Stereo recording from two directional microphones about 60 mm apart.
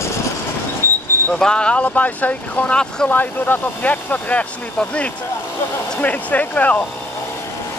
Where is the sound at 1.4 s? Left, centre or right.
Centre.